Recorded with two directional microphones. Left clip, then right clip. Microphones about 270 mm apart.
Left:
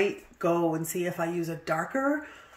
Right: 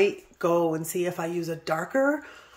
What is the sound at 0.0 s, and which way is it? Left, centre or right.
A woman's voice, centre.